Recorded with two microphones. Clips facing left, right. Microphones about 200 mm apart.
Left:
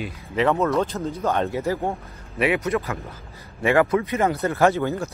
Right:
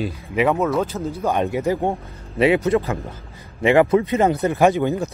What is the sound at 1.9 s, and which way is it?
Speech, 25° right (ahead or behind).